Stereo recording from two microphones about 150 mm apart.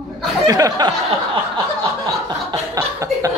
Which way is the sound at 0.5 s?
25° right (ahead or behind).